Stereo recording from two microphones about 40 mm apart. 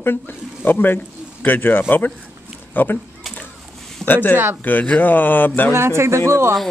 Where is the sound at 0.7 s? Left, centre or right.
Left.